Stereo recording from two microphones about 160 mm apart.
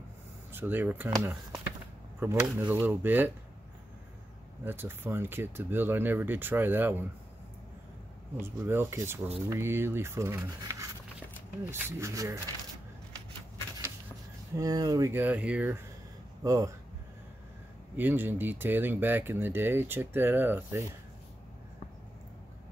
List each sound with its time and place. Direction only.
0.5 s speech: 10° right (ahead or behind)
4.6 s speech: 15° right (ahead or behind)
8.4 s speech: 15° right (ahead or behind)
14.5 s speech: 25° right (ahead or behind)
16.4 s speech: 20° right (ahead or behind)
17.9 s speech: 10° right (ahead or behind)